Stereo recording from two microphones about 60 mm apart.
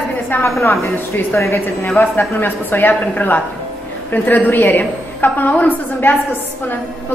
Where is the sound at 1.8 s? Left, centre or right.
Left.